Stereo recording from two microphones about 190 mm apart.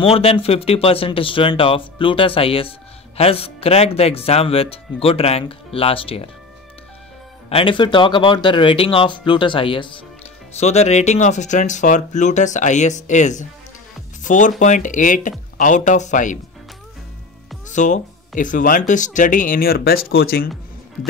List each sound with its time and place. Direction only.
0.0 s speech: 30° left (ahead or behind)
7.4 s speech: 30° left (ahead or behind)
17.6 s speech: 40° left (ahead or behind)